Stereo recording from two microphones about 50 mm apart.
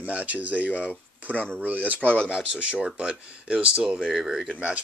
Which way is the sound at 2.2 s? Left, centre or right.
Right.